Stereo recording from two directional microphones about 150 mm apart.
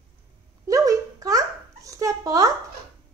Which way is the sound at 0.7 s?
25° right (ahead or behind).